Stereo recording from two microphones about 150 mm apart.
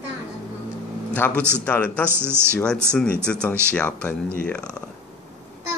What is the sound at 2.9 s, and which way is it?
A man's voice, 5° left (ahead or behind).